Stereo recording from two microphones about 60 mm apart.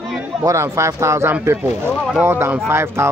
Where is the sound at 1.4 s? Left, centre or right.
Right.